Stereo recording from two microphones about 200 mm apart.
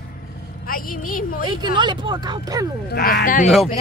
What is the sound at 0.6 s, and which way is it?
Speech, 45° left (ahead or behind).